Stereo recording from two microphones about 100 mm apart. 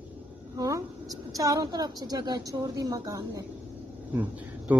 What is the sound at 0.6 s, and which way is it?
A woman's voice, 35° right (ahead or behind).